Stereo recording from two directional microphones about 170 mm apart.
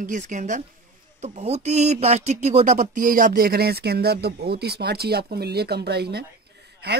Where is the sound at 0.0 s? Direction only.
45° right (ahead or behind).